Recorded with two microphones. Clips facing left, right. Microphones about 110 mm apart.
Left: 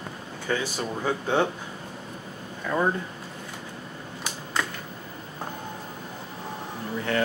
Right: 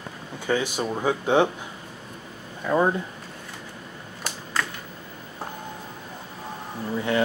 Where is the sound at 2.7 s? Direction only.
15° right (ahead or behind).